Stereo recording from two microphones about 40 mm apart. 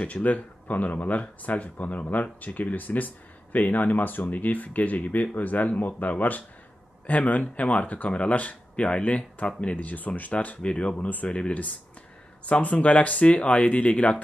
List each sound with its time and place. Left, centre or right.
0.0 s speech: left
9.8 s speech: left
10.6 s speech: left